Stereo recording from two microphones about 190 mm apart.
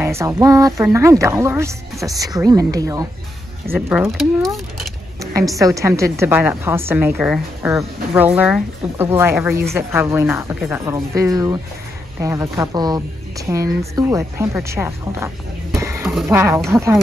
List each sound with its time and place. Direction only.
0.0 s a woman's voice: 10° right (ahead or behind)